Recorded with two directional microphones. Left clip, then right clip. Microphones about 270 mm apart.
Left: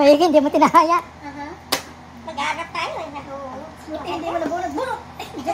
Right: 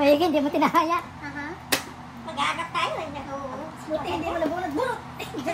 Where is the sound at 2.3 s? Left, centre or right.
Centre.